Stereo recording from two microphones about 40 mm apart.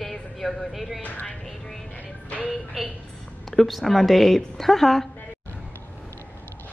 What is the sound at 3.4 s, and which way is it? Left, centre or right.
A woman's voice, centre.